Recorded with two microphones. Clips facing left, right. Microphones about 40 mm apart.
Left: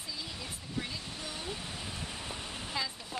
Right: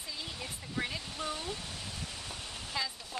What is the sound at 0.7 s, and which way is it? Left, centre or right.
Speech, right.